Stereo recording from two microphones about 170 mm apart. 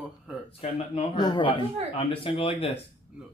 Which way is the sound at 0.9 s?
25° left (ahead or behind).